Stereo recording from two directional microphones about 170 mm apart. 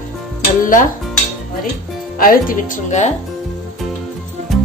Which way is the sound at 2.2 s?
50° left (ahead or behind).